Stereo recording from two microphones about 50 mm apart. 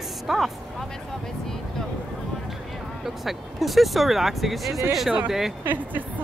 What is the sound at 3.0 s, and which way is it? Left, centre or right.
Speech, centre.